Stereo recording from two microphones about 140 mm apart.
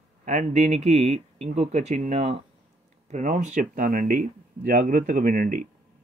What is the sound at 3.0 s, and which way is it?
Speech, 65° right (ahead or behind).